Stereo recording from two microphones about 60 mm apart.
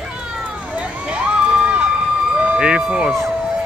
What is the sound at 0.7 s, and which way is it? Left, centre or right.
Run, centre.